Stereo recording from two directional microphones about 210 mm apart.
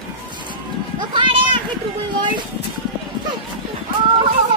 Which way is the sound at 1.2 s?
25° right (ahead or behind).